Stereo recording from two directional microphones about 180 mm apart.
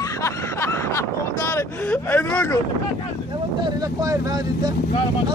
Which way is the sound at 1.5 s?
10° left (ahead or behind).